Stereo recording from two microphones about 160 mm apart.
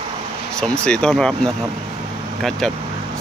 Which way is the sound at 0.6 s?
5° left (ahead or behind).